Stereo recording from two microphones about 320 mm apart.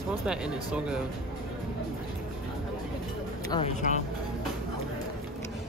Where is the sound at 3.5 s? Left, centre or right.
Centre.